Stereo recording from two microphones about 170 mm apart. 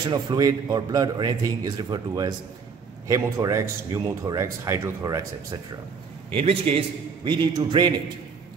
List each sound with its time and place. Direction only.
0.1 s speech: 25° right (ahead or behind)
6.3 s a man's voice: 35° right (ahead or behind)